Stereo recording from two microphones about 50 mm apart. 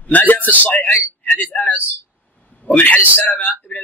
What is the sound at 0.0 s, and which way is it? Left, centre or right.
A man's voice, left.